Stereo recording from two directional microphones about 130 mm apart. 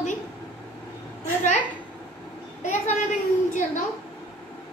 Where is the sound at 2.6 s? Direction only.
70° left (ahead or behind).